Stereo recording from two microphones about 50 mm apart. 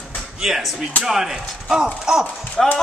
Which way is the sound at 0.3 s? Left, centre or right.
Centre.